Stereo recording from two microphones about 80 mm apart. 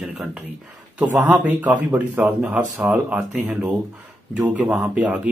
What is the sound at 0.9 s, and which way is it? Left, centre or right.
Speech, centre.